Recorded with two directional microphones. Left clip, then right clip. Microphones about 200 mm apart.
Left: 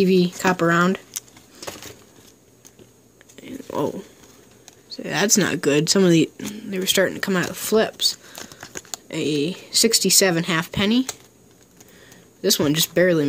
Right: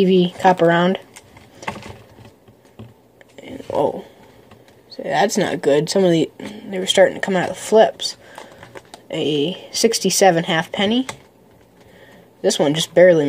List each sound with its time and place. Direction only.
0.0 s speech: 20° left (ahead or behind)
4.8 s speech: 45° left (ahead or behind)
12.4 s speech: 30° left (ahead or behind)